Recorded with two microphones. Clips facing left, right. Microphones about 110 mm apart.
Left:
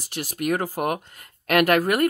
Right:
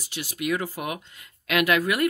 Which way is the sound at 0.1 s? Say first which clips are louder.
Left 3 dB; 45° left (ahead or behind).